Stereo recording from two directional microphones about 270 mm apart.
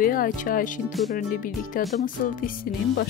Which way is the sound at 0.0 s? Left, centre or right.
Left.